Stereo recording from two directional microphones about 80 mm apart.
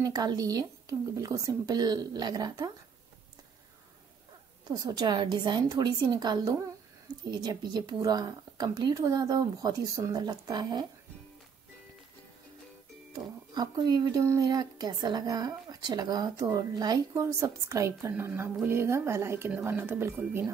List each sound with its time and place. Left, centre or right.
0.0 s speech: right
4.6 s speech: right
13.5 s speech: right
14.2 s speech: right
17.1 s speech: right
18.1 s speech: right